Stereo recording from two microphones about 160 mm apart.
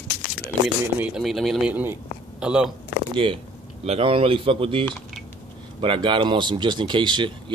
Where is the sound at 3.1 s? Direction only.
35° right (ahead or behind).